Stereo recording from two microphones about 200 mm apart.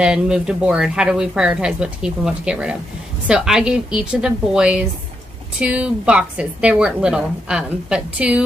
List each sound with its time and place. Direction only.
0.0 s speech: 5° right (ahead or behind)